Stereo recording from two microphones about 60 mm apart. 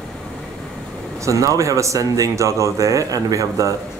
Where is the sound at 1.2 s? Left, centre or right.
Right.